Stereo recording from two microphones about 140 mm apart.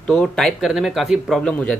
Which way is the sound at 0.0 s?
5° left (ahead or behind).